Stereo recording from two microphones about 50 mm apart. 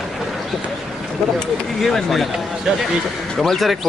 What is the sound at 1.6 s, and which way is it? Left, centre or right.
Speech, centre.